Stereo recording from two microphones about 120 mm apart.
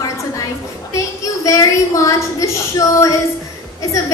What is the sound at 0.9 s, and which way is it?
A woman's voice, 30° left (ahead or behind).